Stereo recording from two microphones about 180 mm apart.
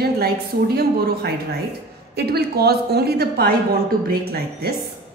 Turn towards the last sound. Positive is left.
turn(degrees=-60)  # may be behind; listen again after turning